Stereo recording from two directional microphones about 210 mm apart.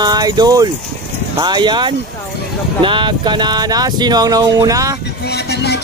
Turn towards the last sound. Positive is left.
turn(degrees=50)  # may be behind; listen again after turning